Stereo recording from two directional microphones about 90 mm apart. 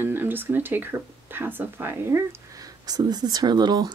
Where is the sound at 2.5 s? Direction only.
45° right (ahead or behind).